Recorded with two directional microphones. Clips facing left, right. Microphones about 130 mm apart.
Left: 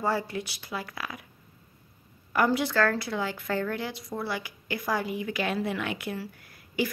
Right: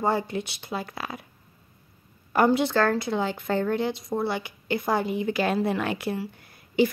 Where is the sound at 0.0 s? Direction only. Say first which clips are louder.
Right 3 dB; 20° right (ahead or behind).